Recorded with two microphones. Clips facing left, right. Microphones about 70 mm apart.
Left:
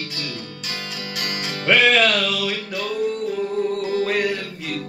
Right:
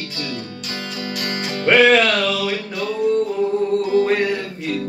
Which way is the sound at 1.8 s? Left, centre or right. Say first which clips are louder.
Right 4 dB; right.